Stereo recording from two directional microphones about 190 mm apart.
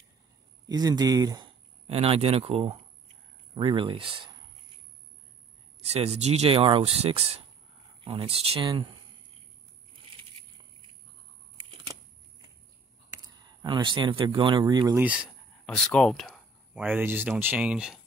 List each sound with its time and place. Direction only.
0.7 s speech: 20° right (ahead or behind)
5.8 s speech: 35° right (ahead or behind)
13.1 s speech: 20° right (ahead or behind)
15.0 s a sound: 5° right (ahead or behind)
16.9 s speech: 10° right (ahead or behind)